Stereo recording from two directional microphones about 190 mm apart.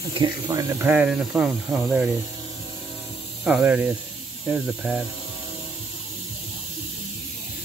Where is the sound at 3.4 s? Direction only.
10° right (ahead or behind).